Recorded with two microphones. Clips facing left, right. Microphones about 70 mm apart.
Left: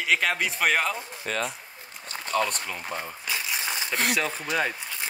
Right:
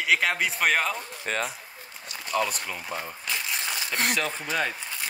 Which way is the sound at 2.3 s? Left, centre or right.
Centre.